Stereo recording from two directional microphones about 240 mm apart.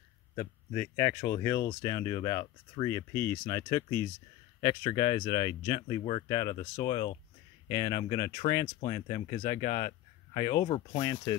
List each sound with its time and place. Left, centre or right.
0.7 s speech: centre